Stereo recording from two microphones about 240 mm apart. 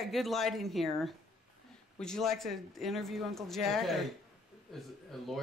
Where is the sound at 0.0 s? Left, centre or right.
Centre.